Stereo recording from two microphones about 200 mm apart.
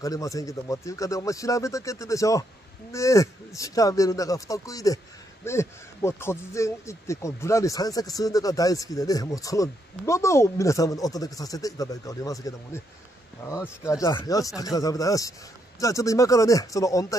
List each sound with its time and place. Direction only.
0.0 s speech: 15° left (ahead or behind)